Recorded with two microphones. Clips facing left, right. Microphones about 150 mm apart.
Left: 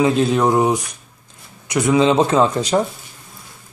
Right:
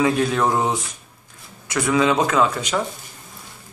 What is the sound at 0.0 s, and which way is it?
Speech, 20° left (ahead or behind).